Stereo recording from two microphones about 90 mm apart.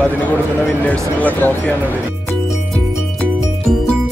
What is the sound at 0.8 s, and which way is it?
Speech, 15° left (ahead or behind).